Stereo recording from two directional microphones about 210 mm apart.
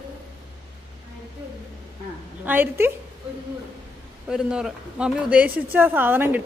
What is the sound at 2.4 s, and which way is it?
Speech, 10° right (ahead or behind).